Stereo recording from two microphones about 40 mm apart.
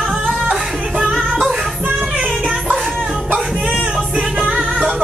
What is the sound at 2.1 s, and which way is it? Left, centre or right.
Music, right.